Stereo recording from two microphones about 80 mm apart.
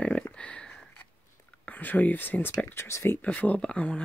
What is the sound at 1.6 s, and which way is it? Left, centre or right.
Speech, left.